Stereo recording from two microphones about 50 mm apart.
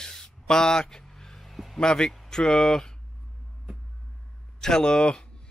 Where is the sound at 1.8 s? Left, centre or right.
Centre.